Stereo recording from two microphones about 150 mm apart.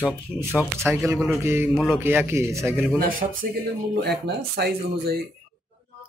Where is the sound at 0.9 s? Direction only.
15° right (ahead or behind).